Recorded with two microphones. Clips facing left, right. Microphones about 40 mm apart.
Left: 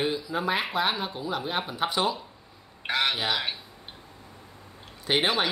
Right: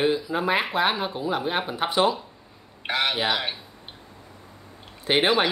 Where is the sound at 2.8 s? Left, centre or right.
Centre.